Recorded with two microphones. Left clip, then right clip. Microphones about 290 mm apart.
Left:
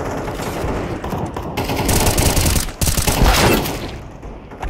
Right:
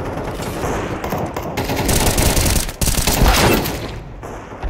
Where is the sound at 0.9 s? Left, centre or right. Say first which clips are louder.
Right 2 dB; centre.